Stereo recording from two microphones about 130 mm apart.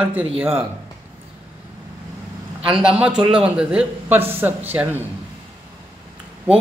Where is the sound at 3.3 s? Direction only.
5° right (ahead or behind).